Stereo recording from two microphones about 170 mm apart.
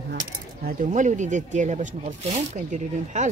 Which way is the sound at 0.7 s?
50° right (ahead or behind).